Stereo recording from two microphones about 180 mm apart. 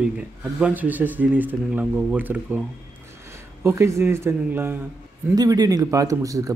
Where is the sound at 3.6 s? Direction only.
15° right (ahead or behind).